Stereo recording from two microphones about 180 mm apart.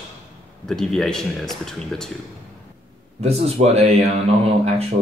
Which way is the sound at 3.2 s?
35° right (ahead or behind).